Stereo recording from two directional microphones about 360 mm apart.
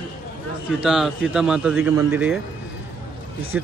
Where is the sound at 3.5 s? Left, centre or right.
Centre.